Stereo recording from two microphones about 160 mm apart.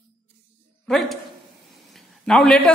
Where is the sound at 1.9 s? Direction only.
5° left (ahead or behind).